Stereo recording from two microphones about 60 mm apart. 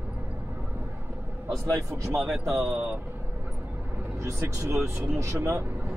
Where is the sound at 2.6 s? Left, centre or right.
Right.